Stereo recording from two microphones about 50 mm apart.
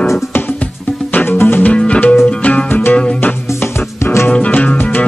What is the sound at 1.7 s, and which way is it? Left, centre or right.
Music, left.